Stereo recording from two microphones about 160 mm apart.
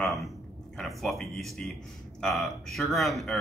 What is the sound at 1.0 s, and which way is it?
A man's voice, centre (ahead or behind).